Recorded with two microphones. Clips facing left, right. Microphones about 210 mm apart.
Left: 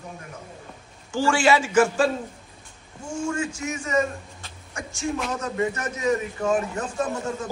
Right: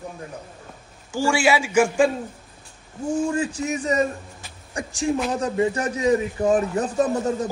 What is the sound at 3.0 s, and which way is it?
Speech, 35° right (ahead or behind).